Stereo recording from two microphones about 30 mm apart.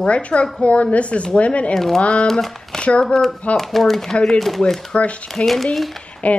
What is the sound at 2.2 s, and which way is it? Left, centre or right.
Speech, centre.